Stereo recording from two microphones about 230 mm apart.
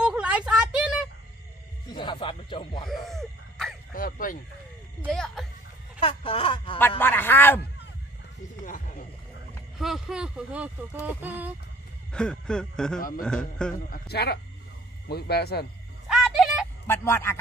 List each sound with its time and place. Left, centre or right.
0.0 s a sound: centre
1.9 s speech: centre
2.9 s music: centre
3.9 s a man's voice: left
5.0 s speech: centre
5.9 s speech: left
7.0 s speech: centre
8.6 s a sound: left
9.8 s speech: centre
12.1 s speech: centre
13.8 s a man's voice: left
16.1 s music: centre
16.8 s speech: centre